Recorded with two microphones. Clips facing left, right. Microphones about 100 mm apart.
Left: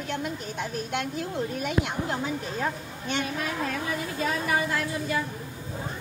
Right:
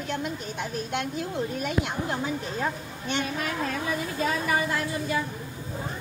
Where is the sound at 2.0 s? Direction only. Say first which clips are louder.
Even; centre (ahead or behind).